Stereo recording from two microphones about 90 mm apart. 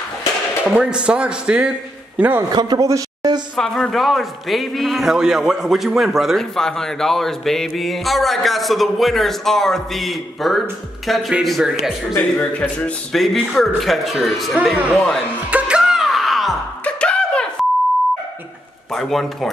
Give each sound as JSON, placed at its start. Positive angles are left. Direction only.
{"t": 0.7, "sound": "a man's voice", "side_deg": -10}
{"t": 2.5, "sound": "a man's voice", "side_deg": -50}
{"t": 2.9, "sound": "a sound", "side_deg": -45}
{"t": 3.5, "sound": "a man's voice", "side_deg": 5}
{"t": 12.2, "sound": "speech", "side_deg": 15}
{"t": 13.1, "sound": "a man's voice", "side_deg": 0}
{"t": 15.5, "sound": "music", "side_deg": -10}
{"t": 16.8, "sound": "a sound", "side_deg": 10}
{"t": 18.9, "sound": "a man's voice", "side_deg": 5}